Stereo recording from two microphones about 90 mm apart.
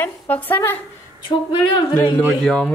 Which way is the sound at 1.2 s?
60° left (ahead or behind).